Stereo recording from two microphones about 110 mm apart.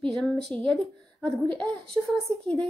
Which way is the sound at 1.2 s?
40° right (ahead or behind).